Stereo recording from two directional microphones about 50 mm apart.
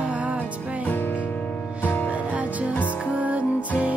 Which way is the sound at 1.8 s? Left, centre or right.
Left.